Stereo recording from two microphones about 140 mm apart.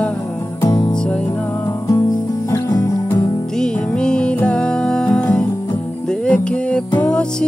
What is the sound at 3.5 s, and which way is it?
Music, 5° left (ahead or behind).